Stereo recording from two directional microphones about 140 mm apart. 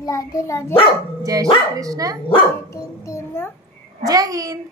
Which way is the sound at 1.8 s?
25° right (ahead or behind).